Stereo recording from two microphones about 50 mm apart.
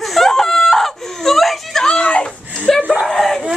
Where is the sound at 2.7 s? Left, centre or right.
Centre.